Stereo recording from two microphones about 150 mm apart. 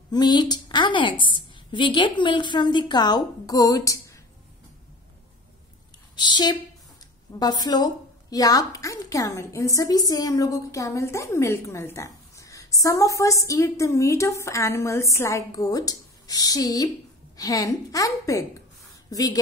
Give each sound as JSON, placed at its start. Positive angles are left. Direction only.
{"t": 0.1, "sound": "a woman's voice", "side_deg": 30}
{"t": 6.1, "sound": "a woman's voice", "side_deg": 30}